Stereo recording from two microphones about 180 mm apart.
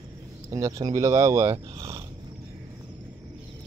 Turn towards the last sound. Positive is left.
turn(degrees=-15)  # may be behind; listen again after turning